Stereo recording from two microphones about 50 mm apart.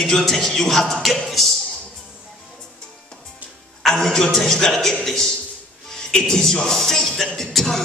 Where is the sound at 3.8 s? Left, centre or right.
Centre.